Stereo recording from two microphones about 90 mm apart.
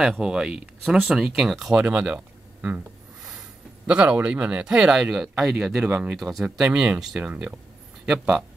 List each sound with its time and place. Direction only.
0.0 s speech: 5° right (ahead or behind)
3.2 s a sound: centre (ahead or behind)
3.9 s speech: 10° right (ahead or behind)